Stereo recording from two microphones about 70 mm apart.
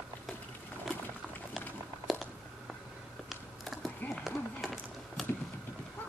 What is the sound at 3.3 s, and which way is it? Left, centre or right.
Computer keyboard, centre.